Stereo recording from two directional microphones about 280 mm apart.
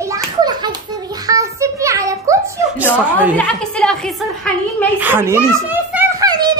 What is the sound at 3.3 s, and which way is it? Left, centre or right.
Speech, centre.